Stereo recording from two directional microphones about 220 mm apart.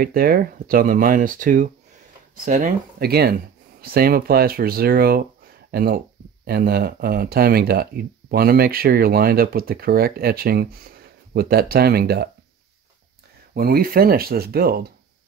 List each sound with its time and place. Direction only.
0.0 s speech: 40° right (ahead or behind)
13.6 s speech: 40° right (ahead or behind)